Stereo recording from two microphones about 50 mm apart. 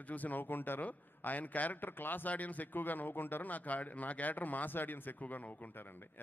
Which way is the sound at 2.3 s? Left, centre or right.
Left.